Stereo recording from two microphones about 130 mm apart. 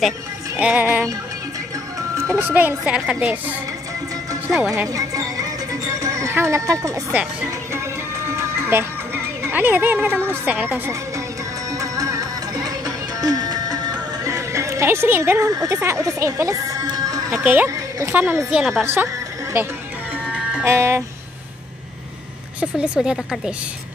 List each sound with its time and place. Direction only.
0.6 s speech: 10° right (ahead or behind)
2.1 s speech: 20° right (ahead or behind)
4.8 s music: 25° right (ahead or behind)
8.3 s speech: 20° right (ahead or behind)
11.7 s music: 25° right (ahead or behind)
15.5 s speech: 25° right (ahead or behind)
17.3 s speech: 10° right (ahead or behind)
17.6 s a sound: 25° right (ahead or behind)
18.1 s speech: 15° right (ahead or behind)
18.6 s a woman's voice: centre (ahead or behind)
20.2 s music: 5° right (ahead or behind)
20.6 s speech: 20° right (ahead or behind)
22.6 s a woman's voice: 5° right (ahead or behind)